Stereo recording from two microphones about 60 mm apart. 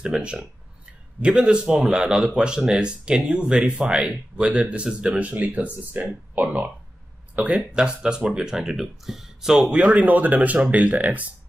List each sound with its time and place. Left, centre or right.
0.0 s speech: centre
7.7 s speech: centre
9.7 s speech: right